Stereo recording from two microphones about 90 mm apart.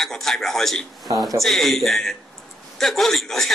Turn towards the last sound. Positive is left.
turn(degrees=5)  # may be behind; listen again after turning